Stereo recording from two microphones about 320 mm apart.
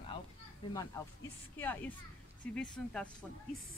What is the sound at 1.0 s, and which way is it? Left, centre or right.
Speech, centre.